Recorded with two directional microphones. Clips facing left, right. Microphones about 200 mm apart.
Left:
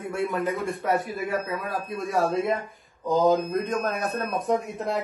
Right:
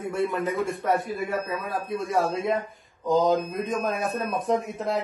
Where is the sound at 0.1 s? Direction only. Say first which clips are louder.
Even; centre (ahead or behind).